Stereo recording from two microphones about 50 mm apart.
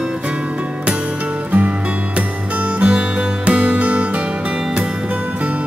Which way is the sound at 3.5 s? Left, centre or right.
Right.